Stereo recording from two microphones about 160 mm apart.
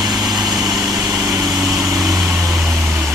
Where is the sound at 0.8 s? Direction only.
20° right (ahead or behind).